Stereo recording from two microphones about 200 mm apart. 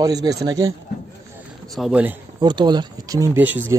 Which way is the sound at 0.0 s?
20° right (ahead or behind).